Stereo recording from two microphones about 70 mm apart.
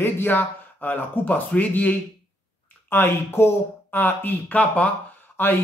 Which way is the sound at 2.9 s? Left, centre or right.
Left.